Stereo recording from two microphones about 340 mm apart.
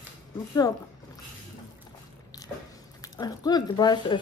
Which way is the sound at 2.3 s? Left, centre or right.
Centre.